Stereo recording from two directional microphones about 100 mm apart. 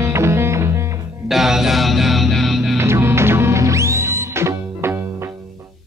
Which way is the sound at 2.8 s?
25° right (ahead or behind).